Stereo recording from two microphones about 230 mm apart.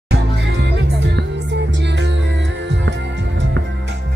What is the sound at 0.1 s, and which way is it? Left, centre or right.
Music, right.